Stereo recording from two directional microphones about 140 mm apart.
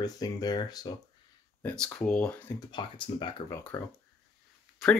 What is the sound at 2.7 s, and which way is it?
Speech, 35° left (ahead or behind).